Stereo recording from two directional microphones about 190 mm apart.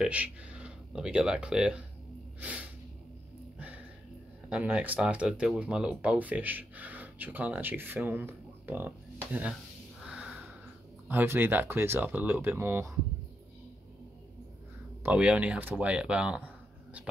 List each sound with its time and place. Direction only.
0.0 s speech: 5° right (ahead or behind)
3.5 s music: 5° right (ahead or behind)
4.5 s speech: 5° right (ahead or behind)
10.0 s a sound: 5° right (ahead or behind)
11.1 s speech: 10° right (ahead or behind)
15.0 s speech: 5° right (ahead or behind)